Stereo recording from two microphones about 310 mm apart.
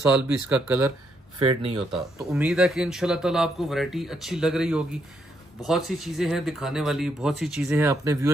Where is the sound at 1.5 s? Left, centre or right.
Centre.